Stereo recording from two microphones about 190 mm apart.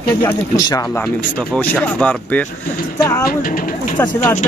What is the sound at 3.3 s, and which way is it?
Speech, 50° left (ahead or behind).